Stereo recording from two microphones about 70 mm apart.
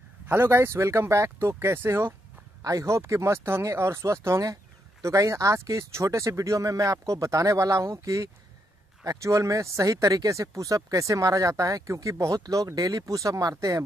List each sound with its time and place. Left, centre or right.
0.3 s speech: right
0.7 s speech: right
2.6 s speech: right